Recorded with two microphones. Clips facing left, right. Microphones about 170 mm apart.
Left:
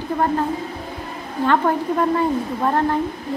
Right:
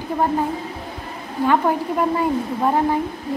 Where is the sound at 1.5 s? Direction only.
10° right (ahead or behind).